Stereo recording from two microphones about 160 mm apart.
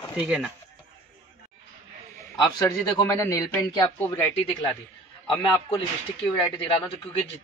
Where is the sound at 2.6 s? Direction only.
20° left (ahead or behind).